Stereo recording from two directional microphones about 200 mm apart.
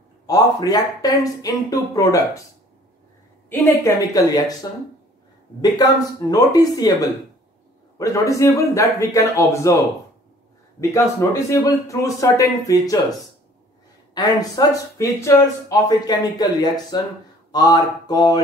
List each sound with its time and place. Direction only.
0.3 s speech: 20° left (ahead or behind)
3.4 s speech: 10° left (ahead or behind)
5.6 s speech: 20° left (ahead or behind)
8.0 s speech: 15° left (ahead or behind)
10.8 s speech: 15° left (ahead or behind)
14.1 s speech: 20° left (ahead or behind)